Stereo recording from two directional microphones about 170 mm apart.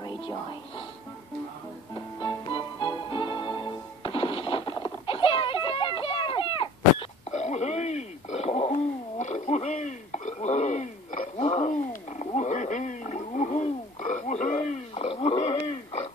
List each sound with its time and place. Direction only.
2.0 s music: 25° left (ahead or behind)
9.2 s a sound: 45° left (ahead or behind)
11.3 s wild animals: 35° left (ahead or behind)